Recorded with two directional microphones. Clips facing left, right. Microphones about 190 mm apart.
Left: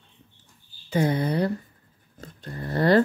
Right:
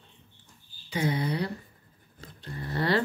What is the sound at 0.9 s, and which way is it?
Speech, 50° left (ahead or behind).